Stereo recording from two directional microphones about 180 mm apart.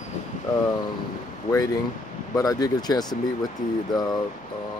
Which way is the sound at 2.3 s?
20° left (ahead or behind).